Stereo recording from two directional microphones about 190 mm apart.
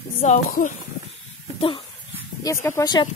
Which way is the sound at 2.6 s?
20° left (ahead or behind).